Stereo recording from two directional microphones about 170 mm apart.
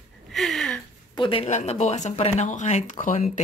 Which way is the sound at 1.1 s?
30° left (ahead or behind).